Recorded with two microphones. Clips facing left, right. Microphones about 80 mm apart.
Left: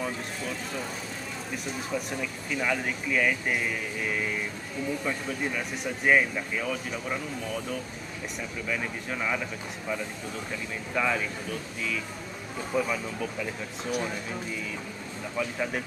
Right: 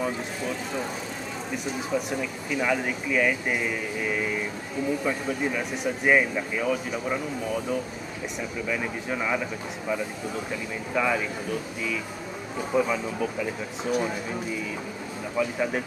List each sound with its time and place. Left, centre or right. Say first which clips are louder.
0.0 s speech: right 4 dB; centre
1.9 s speech: right 4 dB; centre
15.3 s speech: right 4 dB; centre